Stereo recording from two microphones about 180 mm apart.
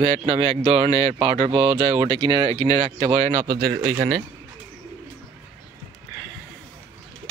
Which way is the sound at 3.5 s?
70° right (ahead or behind).